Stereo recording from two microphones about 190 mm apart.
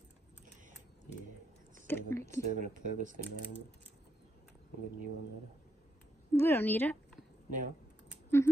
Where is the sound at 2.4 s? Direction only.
40° right (ahead or behind).